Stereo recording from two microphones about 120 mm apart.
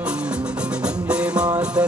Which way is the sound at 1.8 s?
15° right (ahead or behind).